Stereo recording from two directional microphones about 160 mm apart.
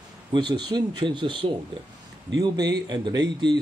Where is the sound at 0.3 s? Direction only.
30° right (ahead or behind).